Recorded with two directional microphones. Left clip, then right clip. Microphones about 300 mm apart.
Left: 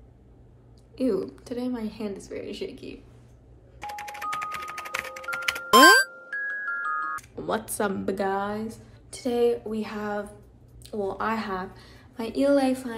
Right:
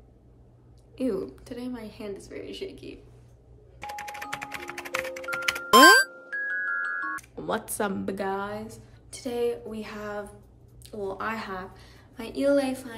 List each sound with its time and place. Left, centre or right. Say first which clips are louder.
0.9 s speech: left 3 dB; centre
3.8 s music: left 3 dB; centre
7.3 s a woman's voice: left 2 dB; centre